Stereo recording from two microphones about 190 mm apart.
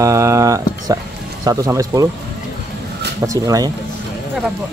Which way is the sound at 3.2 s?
15° right (ahead or behind).